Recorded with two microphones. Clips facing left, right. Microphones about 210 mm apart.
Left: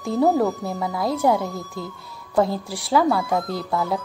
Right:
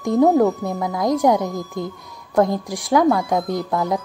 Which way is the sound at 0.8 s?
15° right (ahead or behind).